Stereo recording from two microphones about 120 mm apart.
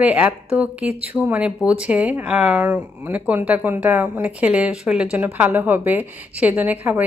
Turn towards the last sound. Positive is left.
turn(degrees=-15)  # may be behind; listen again after turning